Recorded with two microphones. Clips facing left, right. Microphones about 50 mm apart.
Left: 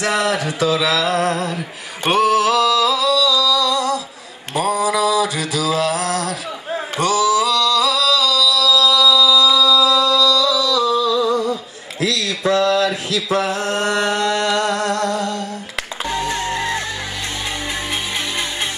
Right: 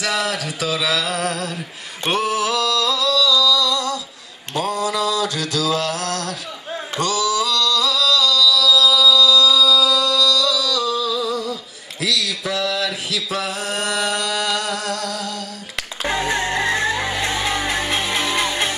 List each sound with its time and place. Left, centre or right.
0.0 s a sound: centre
4.6 s mantra: centre
7.0 s singing: centre
12.0 s mantra: centre
14.4 s music: centre
17.2 s music: right